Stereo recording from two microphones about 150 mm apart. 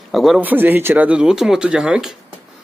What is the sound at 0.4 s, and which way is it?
Speech, 10° right (ahead or behind).